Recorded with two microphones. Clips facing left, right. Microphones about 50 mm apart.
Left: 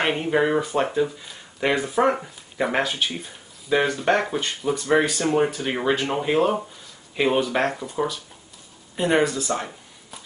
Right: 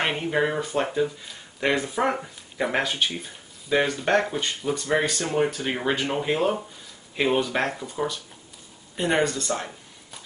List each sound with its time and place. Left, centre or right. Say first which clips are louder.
0.0 s speech: left 3 dB; centre
5.2 s speech: left 3 dB; centre
5.5 s speech: left 3 dB; centre
8.9 s a sound: left 3 dB; centre